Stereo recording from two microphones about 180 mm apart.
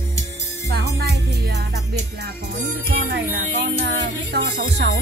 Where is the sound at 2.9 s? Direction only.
55° right (ahead or behind).